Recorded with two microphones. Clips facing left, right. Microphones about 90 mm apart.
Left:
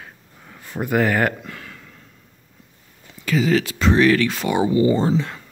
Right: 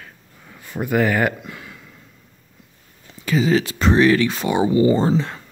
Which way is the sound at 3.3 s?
20° right (ahead or behind).